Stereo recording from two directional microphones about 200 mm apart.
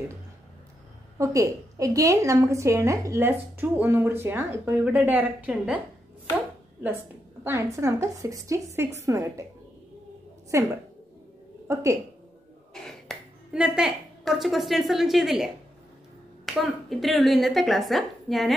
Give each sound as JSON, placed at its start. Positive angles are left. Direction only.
{"t": 1.1, "sound": "a woman's voice", "side_deg": -15}
{"t": 7.4, "sound": "a woman's voice", "side_deg": -15}
{"t": 10.5, "sound": "a woman's voice", "side_deg": -15}
{"t": 12.8, "sound": "speech", "side_deg": 0}